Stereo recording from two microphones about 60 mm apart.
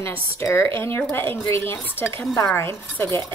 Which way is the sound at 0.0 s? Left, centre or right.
Left.